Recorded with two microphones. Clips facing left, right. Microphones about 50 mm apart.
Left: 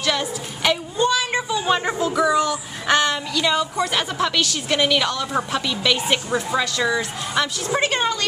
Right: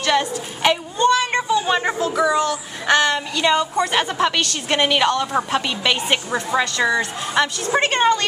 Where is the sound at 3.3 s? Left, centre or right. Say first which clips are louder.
Right 3 dB; right.